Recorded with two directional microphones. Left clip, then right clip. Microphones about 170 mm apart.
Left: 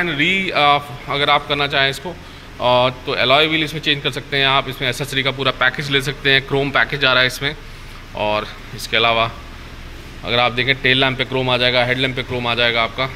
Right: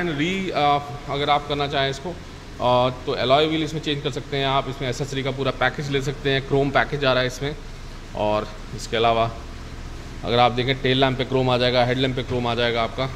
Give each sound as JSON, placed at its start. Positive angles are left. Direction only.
{"t": 0.0, "sound": "a man's voice", "side_deg": -10}